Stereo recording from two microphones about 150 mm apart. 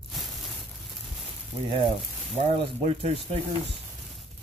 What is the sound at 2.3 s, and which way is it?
Speech, 45° right (ahead or behind).